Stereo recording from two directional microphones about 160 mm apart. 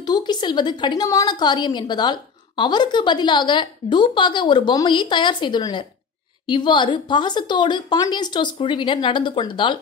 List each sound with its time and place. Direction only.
0.0 s a woman's voice: 25° left (ahead or behind)